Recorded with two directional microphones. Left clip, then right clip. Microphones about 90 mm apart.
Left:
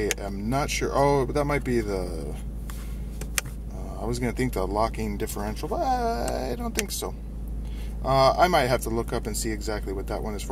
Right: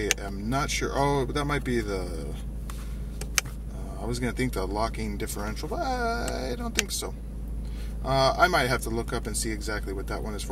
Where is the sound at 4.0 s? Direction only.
20° left (ahead or behind).